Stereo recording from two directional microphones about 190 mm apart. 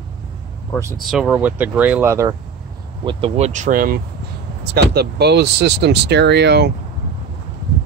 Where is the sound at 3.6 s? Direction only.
45° right (ahead or behind).